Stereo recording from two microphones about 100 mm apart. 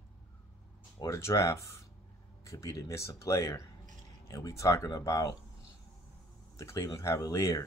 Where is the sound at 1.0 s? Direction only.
35° left (ahead or behind).